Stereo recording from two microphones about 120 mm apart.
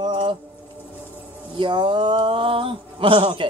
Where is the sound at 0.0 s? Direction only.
45° right (ahead or behind).